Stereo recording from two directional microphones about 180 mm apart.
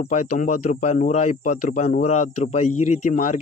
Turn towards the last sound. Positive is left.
turn(degrees=45)  # may be behind; listen again after turning